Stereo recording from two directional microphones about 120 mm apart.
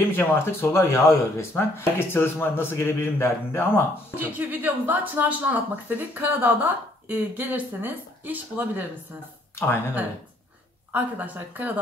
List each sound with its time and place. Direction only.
0.1 s speech: 20° left (ahead or behind)
4.2 s a woman's voice: 15° right (ahead or behind)
10.9 s a woman's voice: 15° right (ahead or behind)